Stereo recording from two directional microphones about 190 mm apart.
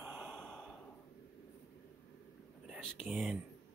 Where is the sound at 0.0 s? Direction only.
10° right (ahead or behind).